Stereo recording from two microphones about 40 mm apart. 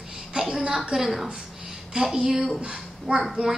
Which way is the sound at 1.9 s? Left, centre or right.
Right.